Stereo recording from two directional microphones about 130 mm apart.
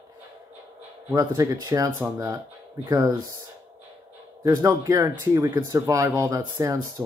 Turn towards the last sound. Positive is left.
turn(degrees=-25)  # may be behind; listen again after turning